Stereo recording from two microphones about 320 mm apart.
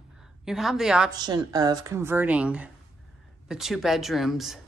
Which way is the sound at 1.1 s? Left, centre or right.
Centre.